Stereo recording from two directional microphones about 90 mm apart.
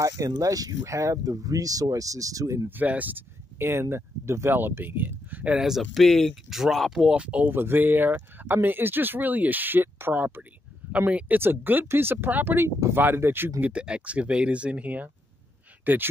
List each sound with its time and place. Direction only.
0.0 s speech: 40° right (ahead or behind)
2.7 s speech: 20° right (ahead or behind); by 7.0 s centre (ahead or behind)
7.0 s speech: 10° right (ahead or behind)
13.6 s speech: 10° right (ahead or behind)